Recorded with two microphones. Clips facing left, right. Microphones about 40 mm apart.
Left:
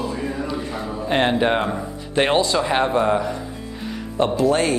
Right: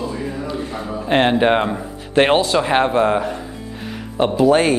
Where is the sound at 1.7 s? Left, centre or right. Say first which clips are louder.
Right 5 dB; centre.